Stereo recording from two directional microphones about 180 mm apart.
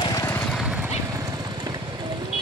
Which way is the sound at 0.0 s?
20° left (ahead or behind).